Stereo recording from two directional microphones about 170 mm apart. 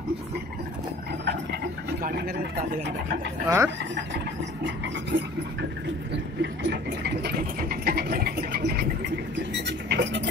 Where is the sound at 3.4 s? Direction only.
20° right (ahead or behind).